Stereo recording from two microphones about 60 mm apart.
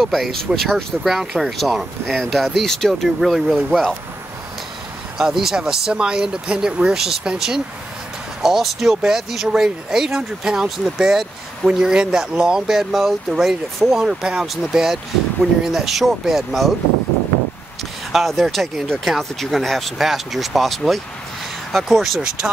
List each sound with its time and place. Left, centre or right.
0.0 s speech: centre
5.1 s speech: centre
18.1 s speech: centre